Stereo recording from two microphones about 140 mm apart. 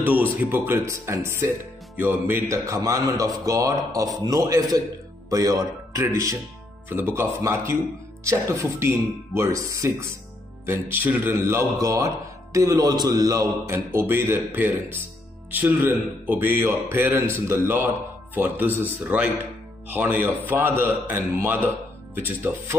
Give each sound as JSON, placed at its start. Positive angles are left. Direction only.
{"t": 0.5, "sound": "a man's voice", "side_deg": -20}